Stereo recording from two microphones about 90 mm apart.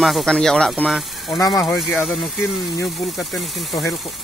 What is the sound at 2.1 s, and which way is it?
Speech, centre (ahead or behind).